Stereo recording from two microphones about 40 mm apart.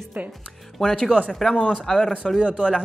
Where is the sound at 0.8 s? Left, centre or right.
Centre.